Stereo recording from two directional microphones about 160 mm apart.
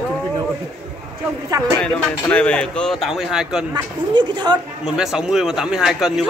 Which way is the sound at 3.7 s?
25° right (ahead or behind).